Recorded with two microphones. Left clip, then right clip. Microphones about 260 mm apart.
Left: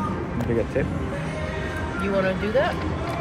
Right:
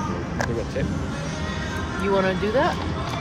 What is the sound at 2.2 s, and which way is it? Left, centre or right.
Speech, right.